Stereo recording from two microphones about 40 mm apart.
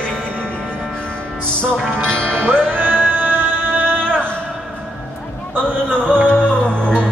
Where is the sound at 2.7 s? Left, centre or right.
Right.